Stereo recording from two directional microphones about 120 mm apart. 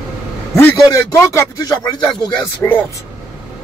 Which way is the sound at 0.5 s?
25° left (ahead or behind).